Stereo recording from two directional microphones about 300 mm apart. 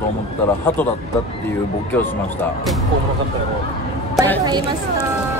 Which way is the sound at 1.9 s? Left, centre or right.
Centre.